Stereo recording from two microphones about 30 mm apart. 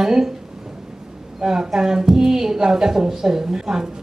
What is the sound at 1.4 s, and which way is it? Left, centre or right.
A woman's voice, right.